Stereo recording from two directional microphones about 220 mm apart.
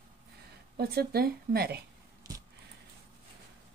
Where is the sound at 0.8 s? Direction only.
45° right (ahead or behind).